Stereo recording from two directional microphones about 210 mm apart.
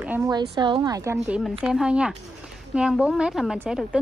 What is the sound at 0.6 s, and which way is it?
Speech, 20° right (ahead or behind).